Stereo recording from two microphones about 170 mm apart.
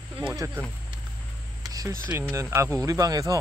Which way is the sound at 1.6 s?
20° right (ahead or behind).